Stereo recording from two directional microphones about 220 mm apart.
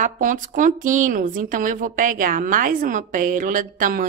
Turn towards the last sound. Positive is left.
turn(degrees=-40)  # may be behind; listen again after turning